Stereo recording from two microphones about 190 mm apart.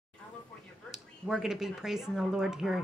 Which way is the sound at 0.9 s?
Centre (ahead or behind).